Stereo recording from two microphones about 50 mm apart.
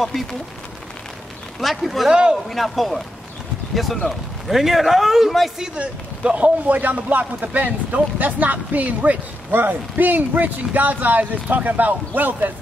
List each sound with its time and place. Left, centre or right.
0.0 s speech: centre
1.6 s speech: centre
2.0 s a man's voice: centre
2.4 s speech: centre
5.8 s a man's voice: right